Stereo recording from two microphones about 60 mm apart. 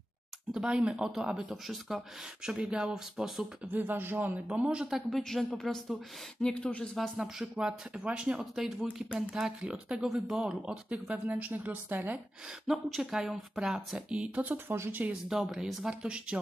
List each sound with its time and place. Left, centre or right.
0.6 s speech: centre
3.6 s beatboxing: right
4.5 s speech: centre
4.9 s a woman's voice: centre
6.4 s speech: centre
7.2 s speech: centre
11.2 s speech: right
11.5 s beatboxing: right
12.4 s speech: centre; by 14.6 s right
14.7 s beatboxing: right
15.2 s speech: centre